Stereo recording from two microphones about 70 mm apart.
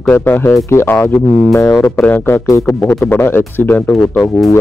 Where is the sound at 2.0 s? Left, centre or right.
Left.